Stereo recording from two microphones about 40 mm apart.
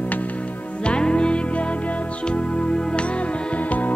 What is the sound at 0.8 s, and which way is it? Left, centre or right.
Music, left.